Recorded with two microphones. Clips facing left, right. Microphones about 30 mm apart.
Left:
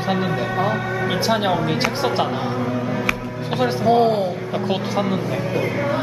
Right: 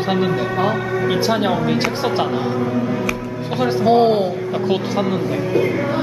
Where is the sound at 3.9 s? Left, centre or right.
Right.